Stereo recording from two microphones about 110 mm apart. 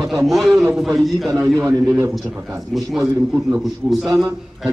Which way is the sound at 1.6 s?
30° right (ahead or behind).